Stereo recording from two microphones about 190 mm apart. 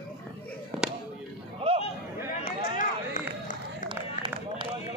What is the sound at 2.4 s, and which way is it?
Run, 45° left (ahead or behind).